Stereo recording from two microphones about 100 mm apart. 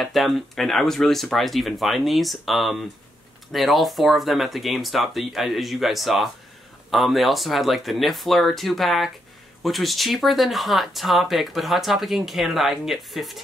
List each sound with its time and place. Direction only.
0.0 s speech: centre (ahead or behind)